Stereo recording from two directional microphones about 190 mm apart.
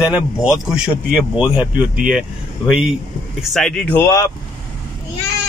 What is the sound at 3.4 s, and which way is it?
Speech, 5° left (ahead or behind).